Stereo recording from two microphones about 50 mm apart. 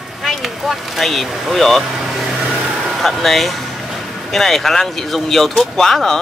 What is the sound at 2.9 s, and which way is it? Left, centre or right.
Speech, centre.